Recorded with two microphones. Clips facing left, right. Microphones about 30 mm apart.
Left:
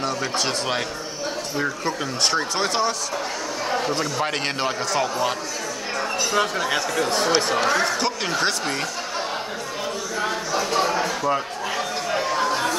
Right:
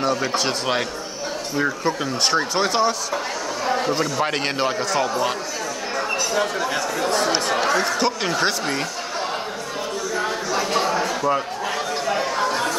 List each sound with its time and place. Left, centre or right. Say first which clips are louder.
0.0 s a man's voice: right 3 dB; centre
6.1 s speech: left 1 dB; centre
7.5 s a man's voice: even; centre
10.1 s a sound: right 1 dB; centre